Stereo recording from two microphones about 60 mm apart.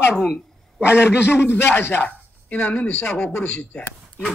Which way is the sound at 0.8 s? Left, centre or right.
Left.